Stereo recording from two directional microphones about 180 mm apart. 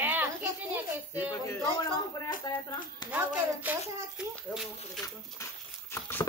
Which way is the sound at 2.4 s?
20° left (ahead or behind).